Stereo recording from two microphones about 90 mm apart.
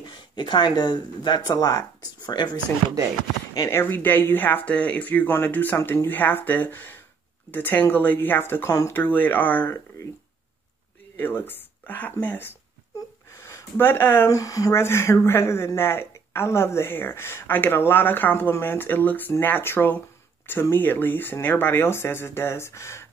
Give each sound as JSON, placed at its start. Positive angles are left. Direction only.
{"t": 0.0, "sound": "speech", "side_deg": 60}
{"t": 3.7, "sound": "speech", "side_deg": 20}
{"t": 8.9, "sound": "speech", "side_deg": 20}
{"t": 11.1, "sound": "speech", "side_deg": 20}
{"t": 13.3, "sound": "a sound", "side_deg": 30}
{"t": 14.3, "sound": "speech", "side_deg": 40}